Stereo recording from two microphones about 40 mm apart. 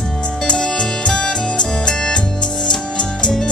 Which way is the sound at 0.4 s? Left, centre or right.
Centre.